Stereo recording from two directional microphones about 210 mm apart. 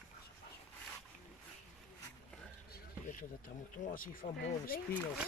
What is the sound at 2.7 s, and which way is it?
Speech, 40° left (ahead or behind).